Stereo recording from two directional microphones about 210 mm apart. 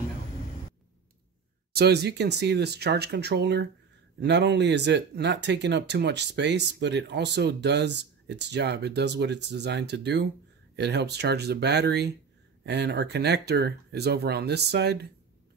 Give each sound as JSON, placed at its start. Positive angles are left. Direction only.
{"t": 1.7, "sound": "speech", "side_deg": -50}